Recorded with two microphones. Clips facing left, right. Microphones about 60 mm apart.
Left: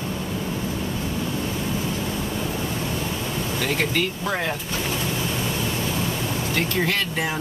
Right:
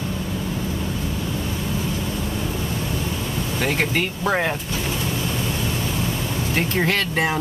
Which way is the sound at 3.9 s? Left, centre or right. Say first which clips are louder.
Right 3 dB; right.